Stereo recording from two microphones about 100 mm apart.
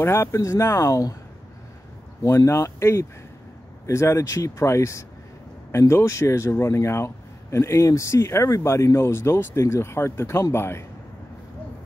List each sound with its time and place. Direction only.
0.0 s speech: 30° left (ahead or behind)
2.2 s speech: 30° left (ahead or behind)